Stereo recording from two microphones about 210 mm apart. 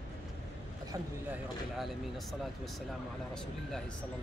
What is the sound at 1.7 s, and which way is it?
Speech, centre (ahead or behind).